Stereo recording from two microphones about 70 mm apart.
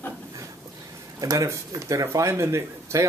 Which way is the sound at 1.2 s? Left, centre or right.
Right.